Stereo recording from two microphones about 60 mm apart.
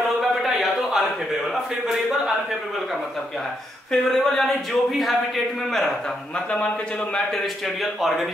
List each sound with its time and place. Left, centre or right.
0.2 s a sound: centre
3.9 s speech: centre
6.3 s speech: centre
7.3 s speech: centre